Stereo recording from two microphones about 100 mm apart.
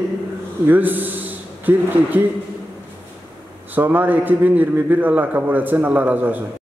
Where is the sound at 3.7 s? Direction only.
20° right (ahead or behind).